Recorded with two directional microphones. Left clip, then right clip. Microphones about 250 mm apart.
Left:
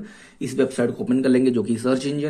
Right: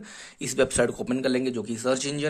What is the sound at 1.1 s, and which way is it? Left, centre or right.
Speech, centre.